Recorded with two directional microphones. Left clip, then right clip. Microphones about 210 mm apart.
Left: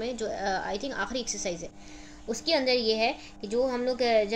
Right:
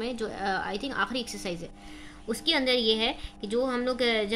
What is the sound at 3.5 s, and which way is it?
Speech, 50° right (ahead or behind).